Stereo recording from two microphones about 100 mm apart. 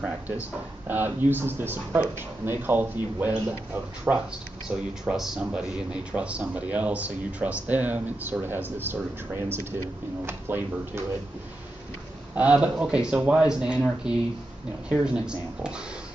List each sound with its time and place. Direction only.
0.0 s speech: 20° right (ahead or behind)
12.4 s speech: 10° right (ahead or behind)